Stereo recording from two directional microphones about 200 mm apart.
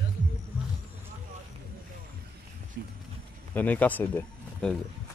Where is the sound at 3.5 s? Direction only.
10° left (ahead or behind).